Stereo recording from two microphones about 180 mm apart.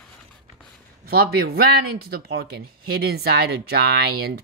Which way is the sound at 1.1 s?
60° right (ahead or behind).